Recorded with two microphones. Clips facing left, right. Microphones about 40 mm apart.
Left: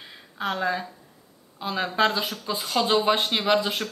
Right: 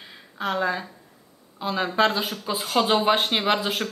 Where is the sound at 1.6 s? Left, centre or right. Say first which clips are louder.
Right 1 dB; centre.